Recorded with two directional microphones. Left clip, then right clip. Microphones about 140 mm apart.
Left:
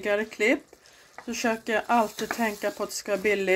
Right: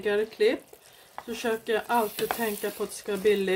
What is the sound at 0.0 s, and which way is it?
Dishes, 30° left (ahead or behind).